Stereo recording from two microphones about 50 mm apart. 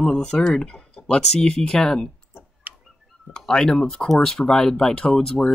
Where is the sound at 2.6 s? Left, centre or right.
Right.